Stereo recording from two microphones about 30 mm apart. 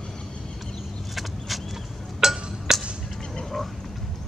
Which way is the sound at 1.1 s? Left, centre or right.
Centre.